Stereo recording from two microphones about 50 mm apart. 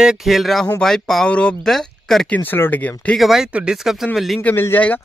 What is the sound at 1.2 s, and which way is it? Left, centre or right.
Speech, left.